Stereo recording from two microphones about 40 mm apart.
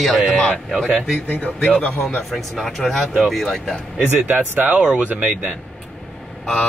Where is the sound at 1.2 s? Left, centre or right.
Left.